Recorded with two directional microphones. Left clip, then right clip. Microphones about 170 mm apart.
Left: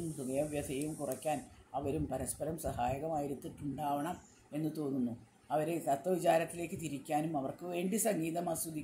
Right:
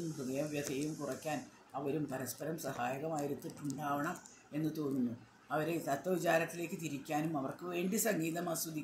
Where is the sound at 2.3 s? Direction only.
15° left (ahead or behind).